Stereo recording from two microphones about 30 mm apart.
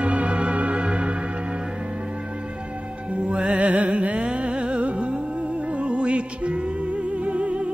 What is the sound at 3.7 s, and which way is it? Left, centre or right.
Music, right.